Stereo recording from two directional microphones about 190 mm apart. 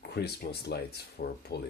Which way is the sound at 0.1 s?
60° left (ahead or behind).